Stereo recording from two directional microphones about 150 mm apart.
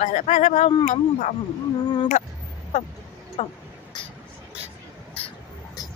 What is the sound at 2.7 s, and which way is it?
Speech, 45° left (ahead or behind).